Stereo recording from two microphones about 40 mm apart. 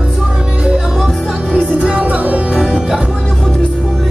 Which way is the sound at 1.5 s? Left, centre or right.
Right.